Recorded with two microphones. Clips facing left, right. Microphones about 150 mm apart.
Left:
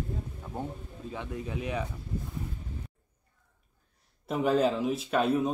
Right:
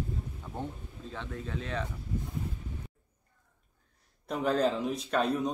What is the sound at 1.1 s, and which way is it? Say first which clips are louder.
Speech: left 2 dB; 10° left (ahead or behind).